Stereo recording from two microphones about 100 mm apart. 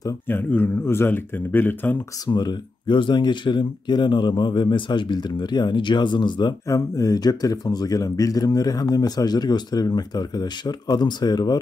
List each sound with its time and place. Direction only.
0.3 s speech: 20° left (ahead or behind)
2.2 s speech: 45° left (ahead or behind)
6.7 s speech: 35° left (ahead or behind)